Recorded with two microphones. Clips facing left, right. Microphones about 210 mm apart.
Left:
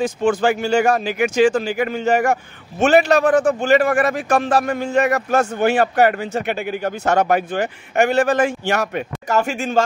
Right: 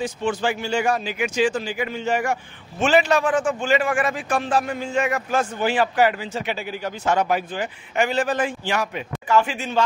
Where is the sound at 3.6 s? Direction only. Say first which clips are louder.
Left 6 dB; 60° left (ahead or behind).